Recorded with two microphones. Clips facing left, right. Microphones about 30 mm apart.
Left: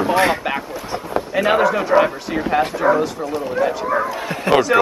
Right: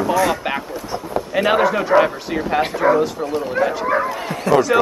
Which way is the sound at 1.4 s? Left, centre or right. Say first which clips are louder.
Even; centre.